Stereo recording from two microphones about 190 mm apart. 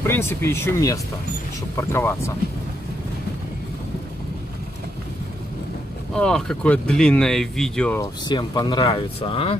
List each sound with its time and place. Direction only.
0.0 s speech: 10° left (ahead or behind)
6.1 s speech: 5° left (ahead or behind)
8.0 s speech: 20° left (ahead or behind)